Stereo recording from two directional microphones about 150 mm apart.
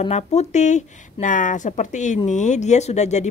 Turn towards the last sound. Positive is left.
turn(degrees=50)  # may be behind; listen again after turning